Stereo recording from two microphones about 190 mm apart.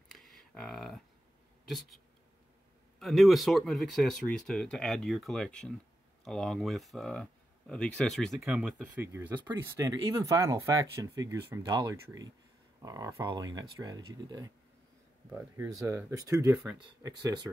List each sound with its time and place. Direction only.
0.1 s a sound: centre (ahead or behind)
1.7 s speech: centre (ahead or behind)
3.0 s speech: centre (ahead or behind); by 17.5 s 25° right (ahead or behind)